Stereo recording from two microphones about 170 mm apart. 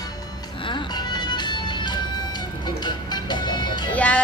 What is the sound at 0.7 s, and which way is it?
Music, 25° left (ahead or behind).